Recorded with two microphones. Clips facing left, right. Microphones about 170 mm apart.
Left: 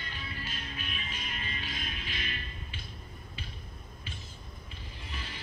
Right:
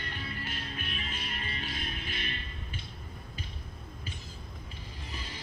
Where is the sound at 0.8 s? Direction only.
35° right (ahead or behind).